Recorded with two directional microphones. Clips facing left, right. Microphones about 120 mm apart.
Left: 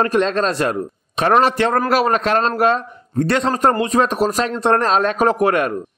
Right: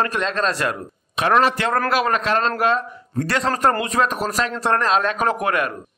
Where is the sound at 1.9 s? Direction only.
40° left (ahead or behind).